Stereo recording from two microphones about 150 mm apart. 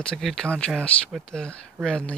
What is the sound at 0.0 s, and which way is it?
Speech, 5° left (ahead or behind).